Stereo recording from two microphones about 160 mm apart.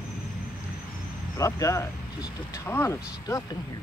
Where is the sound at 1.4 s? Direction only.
20° left (ahead or behind).